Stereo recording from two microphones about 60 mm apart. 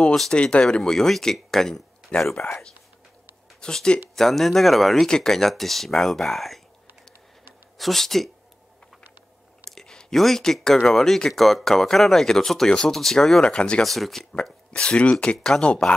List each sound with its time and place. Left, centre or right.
0.3 s speech: centre
7.7 s speech: centre
9.7 s speech: centre
13.8 s speech: centre
14.3 s speech: centre
15.3 s speech: centre